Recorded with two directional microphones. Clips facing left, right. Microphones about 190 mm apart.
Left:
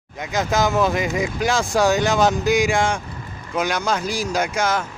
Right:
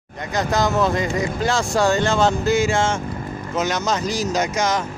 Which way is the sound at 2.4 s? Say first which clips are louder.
Even; 15° left (ahead or behind).